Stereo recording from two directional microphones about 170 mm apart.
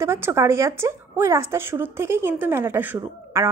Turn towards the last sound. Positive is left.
turn(degrees=-15)  # may be behind; listen again after turning